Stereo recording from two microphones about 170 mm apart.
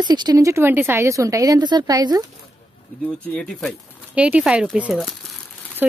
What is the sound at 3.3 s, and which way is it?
A woman's voice, 5° left (ahead or behind).